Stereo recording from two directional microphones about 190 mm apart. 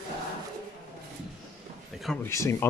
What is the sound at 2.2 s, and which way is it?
Speech, 15° left (ahead or behind).